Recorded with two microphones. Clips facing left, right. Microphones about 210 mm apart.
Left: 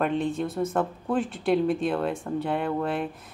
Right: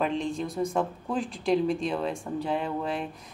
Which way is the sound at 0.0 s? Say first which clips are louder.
Left 3 dB; 5° left (ahead or behind).